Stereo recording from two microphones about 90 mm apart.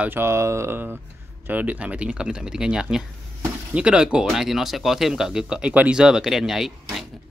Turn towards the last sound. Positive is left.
turn(degrees=-5)  # may be behind; listen again after turning